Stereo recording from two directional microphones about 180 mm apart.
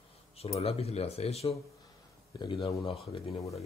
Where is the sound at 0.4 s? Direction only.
35° left (ahead or behind).